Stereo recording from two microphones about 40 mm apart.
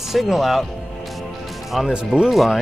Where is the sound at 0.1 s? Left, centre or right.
Centre.